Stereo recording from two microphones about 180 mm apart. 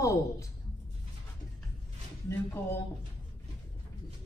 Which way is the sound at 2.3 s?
10° left (ahead or behind).